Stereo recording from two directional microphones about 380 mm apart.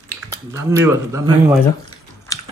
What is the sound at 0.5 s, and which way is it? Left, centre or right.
Speech, centre.